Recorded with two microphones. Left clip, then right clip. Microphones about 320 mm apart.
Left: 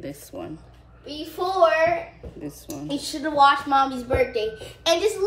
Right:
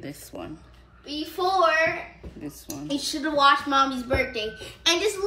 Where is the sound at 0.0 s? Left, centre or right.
Centre.